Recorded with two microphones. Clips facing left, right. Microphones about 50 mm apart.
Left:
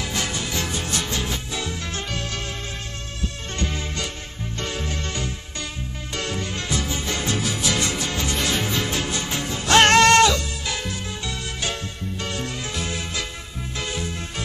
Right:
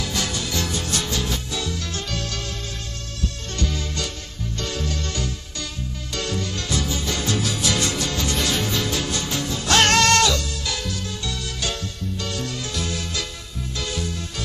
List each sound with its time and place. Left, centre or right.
0.0 s music: left
3.5 s music: left